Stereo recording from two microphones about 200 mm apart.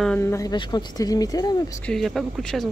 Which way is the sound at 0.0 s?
10° left (ahead or behind).